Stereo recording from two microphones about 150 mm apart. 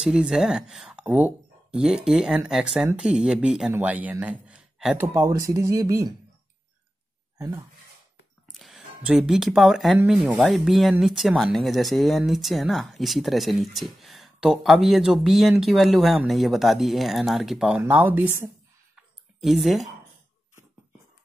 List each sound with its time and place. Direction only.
0.0 s a man's voice: 5° right (ahead or behind)
4.9 s speech: 15° right (ahead or behind)
7.3 s speech: 15° right (ahead or behind)
8.5 s speech: centre (ahead or behind)
19.4 s speech: centre (ahead or behind)